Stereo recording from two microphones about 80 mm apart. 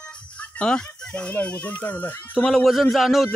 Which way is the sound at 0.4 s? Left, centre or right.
Centre.